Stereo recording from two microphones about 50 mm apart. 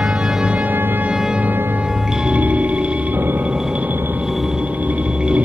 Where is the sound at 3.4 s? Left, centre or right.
Right.